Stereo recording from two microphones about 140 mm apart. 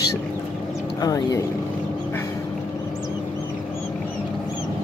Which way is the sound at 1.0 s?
25° left (ahead or behind).